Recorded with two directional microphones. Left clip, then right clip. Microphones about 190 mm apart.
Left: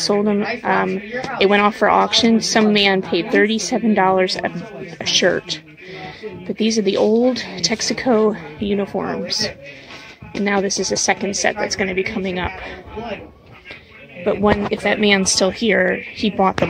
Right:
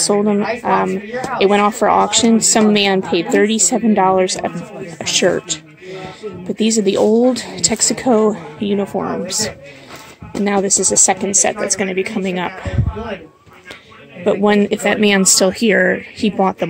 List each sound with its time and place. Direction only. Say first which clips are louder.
0.0 s a woman's voice: right 3 dB; 15° right (ahead or behind)
10.3 s a woman's voice: right 3 dB; 20° right (ahead or behind)
14.2 s a woman's voice: right 3 dB; 25° right (ahead or behind)